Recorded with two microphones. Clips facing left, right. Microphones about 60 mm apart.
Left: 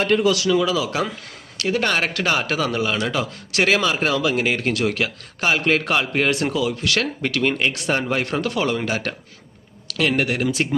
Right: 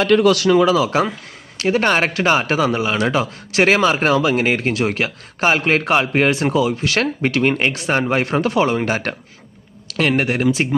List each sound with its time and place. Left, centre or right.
0.3 s a man's voice: right